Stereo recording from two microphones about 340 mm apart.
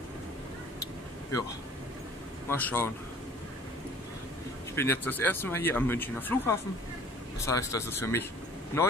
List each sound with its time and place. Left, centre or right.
2.5 s speech: centre
4.7 s speech: centre